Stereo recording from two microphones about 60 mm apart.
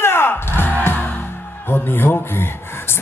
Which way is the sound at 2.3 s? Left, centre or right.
Left.